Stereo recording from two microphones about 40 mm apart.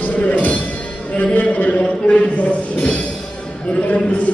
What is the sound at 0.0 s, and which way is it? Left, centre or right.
Music, left.